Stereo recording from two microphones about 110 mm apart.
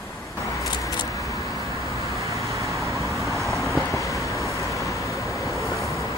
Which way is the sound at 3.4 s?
30° left (ahead or behind).